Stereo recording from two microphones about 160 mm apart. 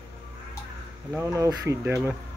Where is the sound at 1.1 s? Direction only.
15° right (ahead or behind).